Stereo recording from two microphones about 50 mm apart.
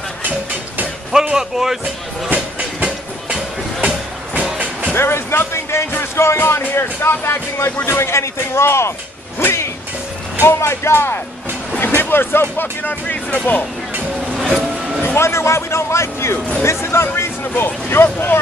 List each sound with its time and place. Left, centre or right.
1.3 s speech: centre
2.8 s music: centre
4.9 s speech: left
9.4 s music: left
10.4 s speech: left
14.3 s train: centre
15.1 s speech: left